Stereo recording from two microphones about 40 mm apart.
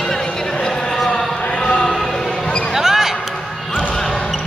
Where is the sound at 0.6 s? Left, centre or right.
Centre.